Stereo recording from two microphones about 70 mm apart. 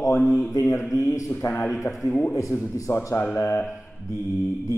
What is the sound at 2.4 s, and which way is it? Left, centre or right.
Mantra, left.